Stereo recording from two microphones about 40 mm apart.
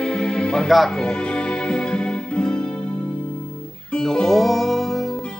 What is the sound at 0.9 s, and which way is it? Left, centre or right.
Music, left.